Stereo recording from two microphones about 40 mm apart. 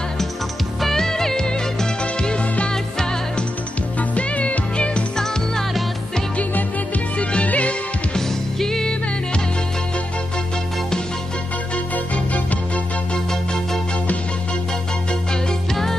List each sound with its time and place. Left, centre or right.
0.7 s music: centre
4.1 s music: left
5.1 s music: centre
7.2 s music: left
8.5 s music: centre
15.7 s music: centre